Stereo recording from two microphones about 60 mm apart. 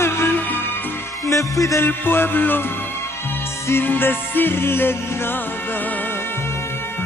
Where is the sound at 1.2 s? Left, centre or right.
Left.